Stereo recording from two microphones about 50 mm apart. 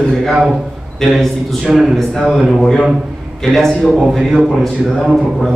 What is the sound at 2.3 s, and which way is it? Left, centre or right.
Speech, centre.